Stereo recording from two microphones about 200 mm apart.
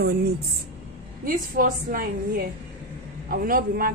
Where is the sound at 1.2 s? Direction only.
45° right (ahead or behind).